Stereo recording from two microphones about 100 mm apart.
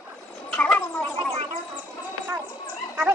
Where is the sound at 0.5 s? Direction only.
15° left (ahead or behind).